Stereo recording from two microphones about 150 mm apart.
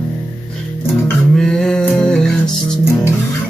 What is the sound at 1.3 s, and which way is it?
Music, 5° left (ahead or behind).